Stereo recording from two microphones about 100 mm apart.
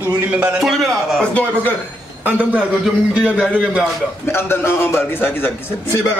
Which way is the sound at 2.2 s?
15° right (ahead or behind).